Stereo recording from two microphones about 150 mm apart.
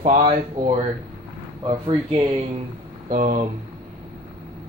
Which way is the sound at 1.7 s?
35° right (ahead or behind).